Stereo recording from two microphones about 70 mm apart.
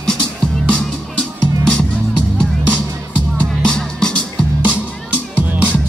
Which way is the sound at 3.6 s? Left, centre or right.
Centre.